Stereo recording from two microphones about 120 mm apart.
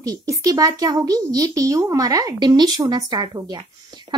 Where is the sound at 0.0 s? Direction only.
30° right (ahead or behind).